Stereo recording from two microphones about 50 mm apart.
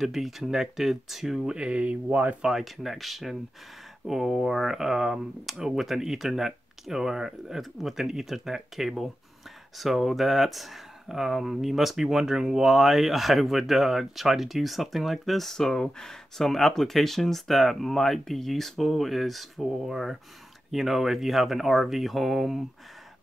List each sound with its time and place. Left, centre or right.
0.0 s speech: centre
1.4 s speech: centre
2.4 s speech: centre